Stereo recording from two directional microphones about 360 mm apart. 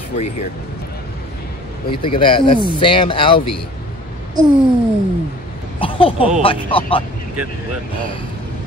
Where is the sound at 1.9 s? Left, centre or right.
Centre.